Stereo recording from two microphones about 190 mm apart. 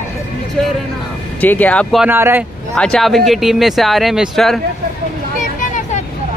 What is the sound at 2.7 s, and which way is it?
Speech, 5° left (ahead or behind).